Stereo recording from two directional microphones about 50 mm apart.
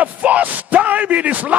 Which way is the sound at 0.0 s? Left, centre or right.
Right.